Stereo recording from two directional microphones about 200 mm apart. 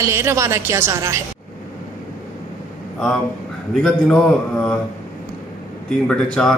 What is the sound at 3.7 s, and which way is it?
A man's voice, centre (ahead or behind).